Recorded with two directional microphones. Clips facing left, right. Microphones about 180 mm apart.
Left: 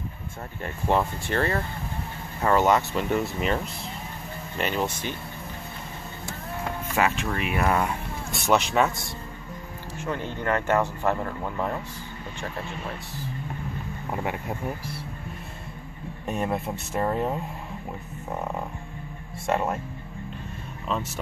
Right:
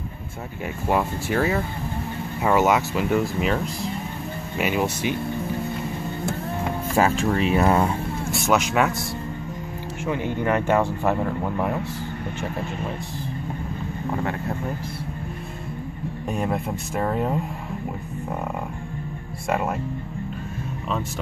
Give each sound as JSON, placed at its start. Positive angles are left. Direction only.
{"t": 0.8, "sound": "speech", "side_deg": -10}
{"t": 7.0, "sound": "speech", "side_deg": -30}
{"t": 8.3, "sound": "speech", "side_deg": 0}
{"t": 10.0, "sound": "speech", "side_deg": -15}
{"t": 16.3, "sound": "speech", "side_deg": 0}
{"t": 19.4, "sound": "speech", "side_deg": 0}